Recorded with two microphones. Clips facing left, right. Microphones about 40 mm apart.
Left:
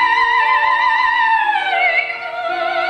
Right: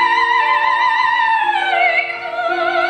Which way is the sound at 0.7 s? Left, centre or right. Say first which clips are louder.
Even; right.